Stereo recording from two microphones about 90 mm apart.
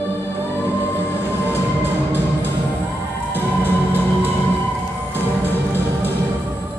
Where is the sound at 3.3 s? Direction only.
20° right (ahead or behind).